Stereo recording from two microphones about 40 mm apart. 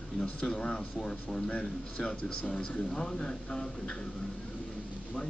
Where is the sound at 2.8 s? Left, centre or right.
Centre.